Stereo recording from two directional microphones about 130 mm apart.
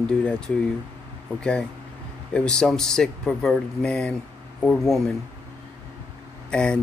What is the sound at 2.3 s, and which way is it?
Speech, 5° left (ahead or behind).